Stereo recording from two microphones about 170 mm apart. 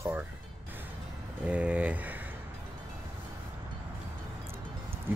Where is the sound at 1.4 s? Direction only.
5° right (ahead or behind).